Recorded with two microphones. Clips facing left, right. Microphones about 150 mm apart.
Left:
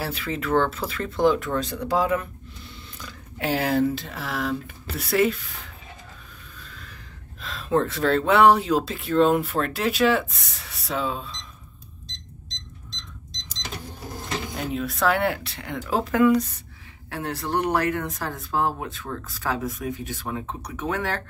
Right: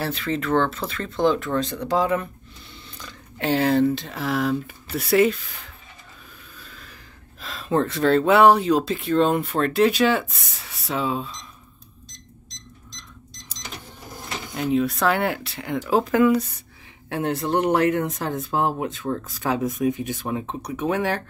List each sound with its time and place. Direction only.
0.0 s speech: 10° left (ahead or behind)
6.6 s speech: 5° right (ahead or behind)
14.7 s speech: centre (ahead or behind)
17.1 s speech: 20° right (ahead or behind)